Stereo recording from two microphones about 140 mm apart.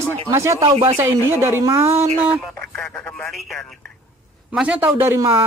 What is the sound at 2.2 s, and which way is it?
Speech, 10° right (ahead or behind).